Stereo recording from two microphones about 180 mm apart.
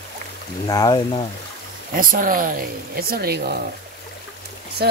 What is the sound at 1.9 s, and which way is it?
Speech, 50° right (ahead or behind).